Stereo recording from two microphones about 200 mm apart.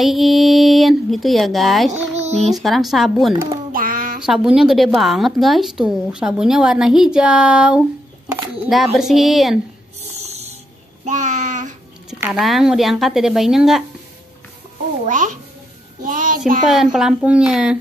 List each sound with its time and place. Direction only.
0.0 s a woman's voice: centre (ahead or behind)
1.9 s music: 35° right (ahead or behind)
2.5 s a woman's voice: centre (ahead or behind)
3.7 s a sound: 45° right (ahead or behind)
4.2 s a woman's voice: 5° right (ahead or behind)
10.1 s music: 30° right (ahead or behind)
11.1 s a sound: 40° right (ahead or behind)
12.1 s a woman's voice: 5° right (ahead or behind)
15.0 s a child's voice: 40° right (ahead or behind)
16.0 s child singing: 40° right (ahead or behind)
16.6 s a woman's voice: centre (ahead or behind)